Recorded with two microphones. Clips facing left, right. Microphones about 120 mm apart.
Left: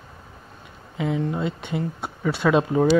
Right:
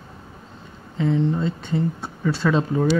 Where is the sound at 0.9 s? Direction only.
10° left (ahead or behind).